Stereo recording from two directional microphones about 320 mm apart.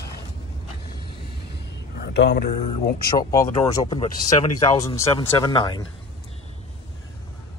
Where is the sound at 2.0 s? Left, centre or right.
Left.